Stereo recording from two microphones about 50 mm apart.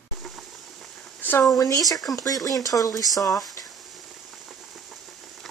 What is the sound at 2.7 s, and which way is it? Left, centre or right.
Speech, left.